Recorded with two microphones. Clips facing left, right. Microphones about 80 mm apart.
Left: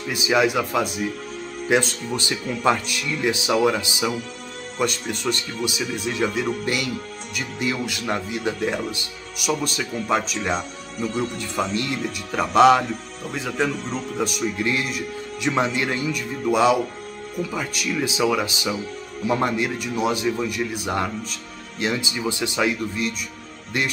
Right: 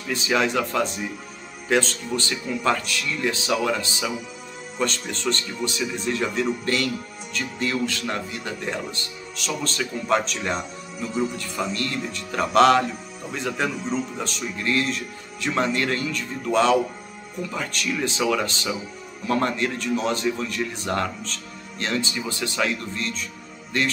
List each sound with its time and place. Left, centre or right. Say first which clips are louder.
0.0 s speech: left 3 dB; centre
11.7 s speech: left 3 dB; centre
12.0 s speech: left 1 dB; centre
14.2 s speech: left 4 dB; centre